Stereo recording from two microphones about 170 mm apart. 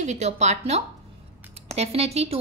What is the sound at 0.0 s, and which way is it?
A woman's voice, 40° right (ahead or behind).